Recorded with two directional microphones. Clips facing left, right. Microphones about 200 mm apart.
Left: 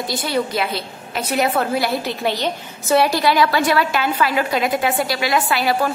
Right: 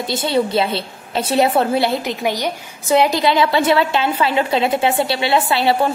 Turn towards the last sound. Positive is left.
turn(degrees=-25)  # may be behind; listen again after turning